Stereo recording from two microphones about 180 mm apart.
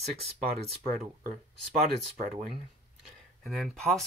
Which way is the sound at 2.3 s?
50° right (ahead or behind).